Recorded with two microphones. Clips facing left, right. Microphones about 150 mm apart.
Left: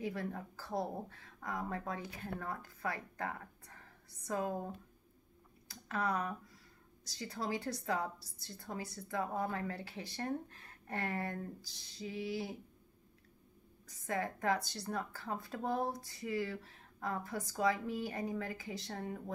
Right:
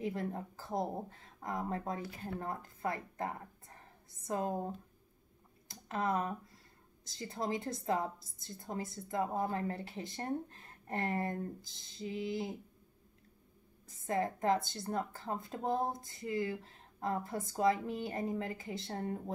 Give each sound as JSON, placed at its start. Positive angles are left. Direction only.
{"t": 0.0, "sound": "a woman's voice", "side_deg": -25}
{"t": 5.7, "sound": "a sound", "side_deg": -25}
{"t": 7.1, "sound": "a woman's voice", "side_deg": -25}
{"t": 13.8, "sound": "a woman's voice", "side_deg": -25}